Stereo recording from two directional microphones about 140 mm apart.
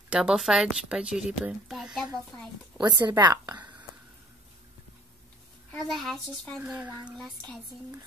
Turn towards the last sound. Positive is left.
turn(degrees=-10)  # may be behind; listen again after turning